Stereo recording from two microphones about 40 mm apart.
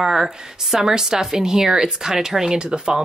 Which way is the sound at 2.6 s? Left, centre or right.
Right.